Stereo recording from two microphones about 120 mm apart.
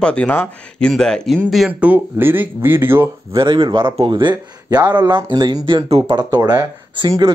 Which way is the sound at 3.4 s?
45° right (ahead or behind).